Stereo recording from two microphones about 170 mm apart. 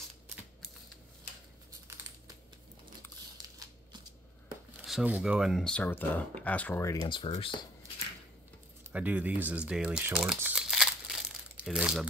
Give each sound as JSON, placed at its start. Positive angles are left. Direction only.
{"t": 3.4, "sound": "a sound", "side_deg": -20}
{"t": 4.8, "sound": "speech", "side_deg": -5}
{"t": 8.9, "sound": "speech", "side_deg": -10}